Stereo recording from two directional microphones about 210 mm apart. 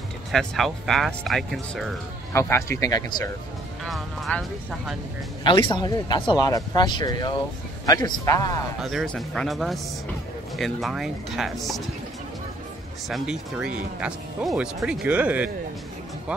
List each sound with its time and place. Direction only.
0.3 s speech: centre (ahead or behind)
2.3 s speech: 10° left (ahead or behind)
3.8 s speech: centre (ahead or behind)
5.4 s speech: 25° left (ahead or behind)
8.8 s speech: centre (ahead or behind)
13.1 s speech: 5° right (ahead or behind)